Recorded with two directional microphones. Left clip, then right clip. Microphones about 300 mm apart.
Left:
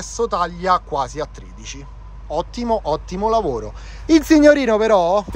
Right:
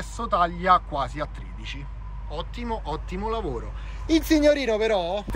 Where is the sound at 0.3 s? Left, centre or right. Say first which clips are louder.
Even; centre.